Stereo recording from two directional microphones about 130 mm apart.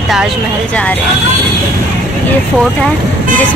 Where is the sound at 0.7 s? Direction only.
10° left (ahead or behind).